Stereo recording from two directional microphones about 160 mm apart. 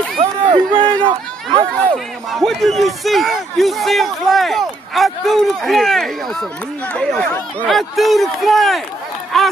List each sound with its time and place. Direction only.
0.2 s a sound: 35° right (ahead or behind)
1.0 s speech: 35° right (ahead or behind)
1.8 s speech: 5° left (ahead or behind)